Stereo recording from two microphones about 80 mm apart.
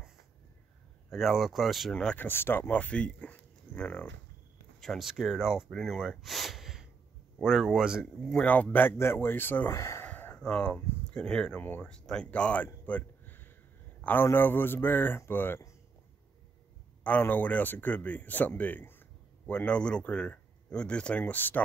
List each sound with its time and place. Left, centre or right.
1.1 s speech: centre
2.1 s speech: left
4.7 s speech: centre
8.0 s speech: centre; by 10.0 s left
10.0 s a sound: centre
10.4 s speech: centre
12.8 s a sound: left
14.0 s speech: left
17.0 s speech: left